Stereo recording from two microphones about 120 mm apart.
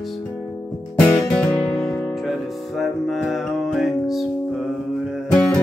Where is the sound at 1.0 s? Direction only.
10° left (ahead or behind).